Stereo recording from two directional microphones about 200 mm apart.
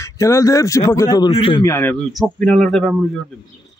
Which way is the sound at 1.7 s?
10° left (ahead or behind).